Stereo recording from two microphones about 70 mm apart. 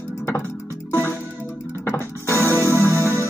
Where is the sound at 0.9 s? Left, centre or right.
Left.